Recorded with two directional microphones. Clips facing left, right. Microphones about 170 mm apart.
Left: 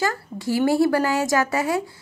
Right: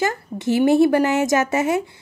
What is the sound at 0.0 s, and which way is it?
A woman's voice, 20° right (ahead or behind).